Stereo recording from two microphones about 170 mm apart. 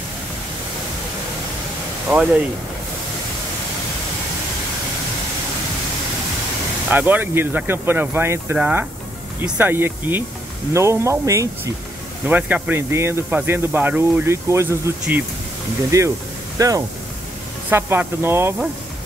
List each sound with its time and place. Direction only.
6.9 s speech: 10° right (ahead or behind)